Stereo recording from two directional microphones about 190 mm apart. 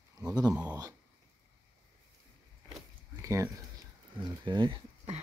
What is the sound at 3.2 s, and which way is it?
Speech, 15° right (ahead or behind).